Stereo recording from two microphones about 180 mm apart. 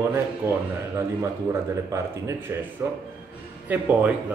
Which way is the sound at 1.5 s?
15° right (ahead or behind).